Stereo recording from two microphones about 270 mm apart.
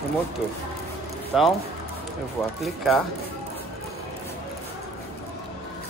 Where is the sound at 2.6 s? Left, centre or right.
Centre.